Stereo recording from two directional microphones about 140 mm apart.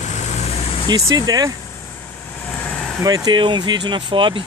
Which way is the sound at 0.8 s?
30° right (ahead or behind).